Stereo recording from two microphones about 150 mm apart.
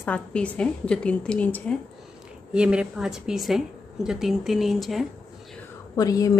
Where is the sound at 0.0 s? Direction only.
10° left (ahead or behind).